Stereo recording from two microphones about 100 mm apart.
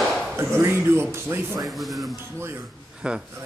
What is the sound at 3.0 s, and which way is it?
Speech, 10° right (ahead or behind).